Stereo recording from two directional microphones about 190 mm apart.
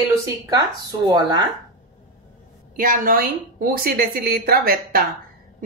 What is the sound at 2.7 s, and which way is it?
A woman's voice, 45° right (ahead or behind).